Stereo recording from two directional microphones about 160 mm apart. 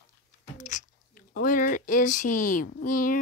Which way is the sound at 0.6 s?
50° left (ahead or behind).